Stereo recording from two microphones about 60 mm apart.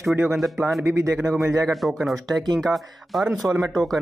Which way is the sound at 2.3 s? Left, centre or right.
Centre.